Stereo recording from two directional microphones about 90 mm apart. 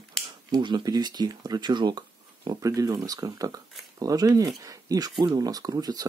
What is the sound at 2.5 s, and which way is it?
Speech, 40° right (ahead or behind).